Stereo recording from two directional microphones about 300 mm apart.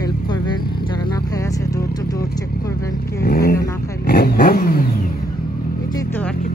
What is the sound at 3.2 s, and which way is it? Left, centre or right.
Speech, left.